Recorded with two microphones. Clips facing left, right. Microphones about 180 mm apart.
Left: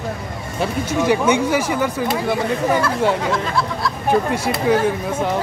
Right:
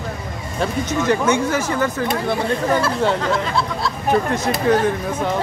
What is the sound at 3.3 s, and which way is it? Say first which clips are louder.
Speech: even; 25° right (ahead or behind).